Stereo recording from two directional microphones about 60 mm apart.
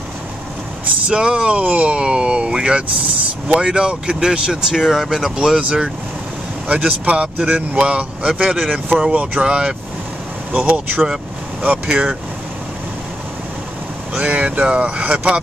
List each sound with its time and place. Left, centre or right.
1.0 s speech: centre
10.5 s speech: right
11.9 s speech: centre
14.1 s speech: right